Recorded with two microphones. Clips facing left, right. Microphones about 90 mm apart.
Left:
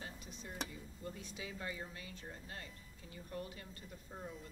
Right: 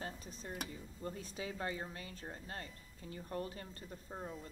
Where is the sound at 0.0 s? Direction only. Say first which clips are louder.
Right 4 dB; 40° right (ahead or behind).